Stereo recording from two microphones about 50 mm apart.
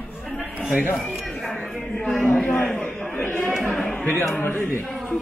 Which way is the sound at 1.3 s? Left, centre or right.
Centre.